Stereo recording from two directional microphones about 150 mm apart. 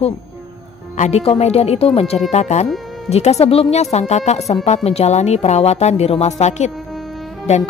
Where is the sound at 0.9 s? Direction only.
50° left (ahead or behind).